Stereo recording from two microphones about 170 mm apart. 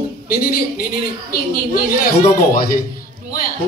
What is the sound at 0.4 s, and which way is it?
A man's voice, 60° left (ahead or behind).